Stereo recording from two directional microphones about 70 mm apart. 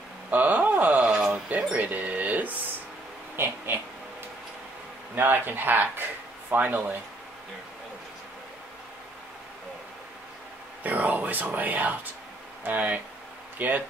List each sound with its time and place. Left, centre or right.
0.3 s a sound: right
1.7 s speech: right
3.3 s speech: right
5.1 s speech: right
10.8 s speech: right